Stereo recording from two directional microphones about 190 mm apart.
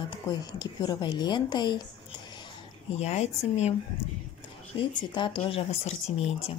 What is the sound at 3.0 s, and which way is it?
Speech, 35° left (ahead or behind).